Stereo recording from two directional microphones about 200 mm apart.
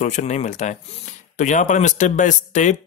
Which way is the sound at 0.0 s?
35° left (ahead or behind).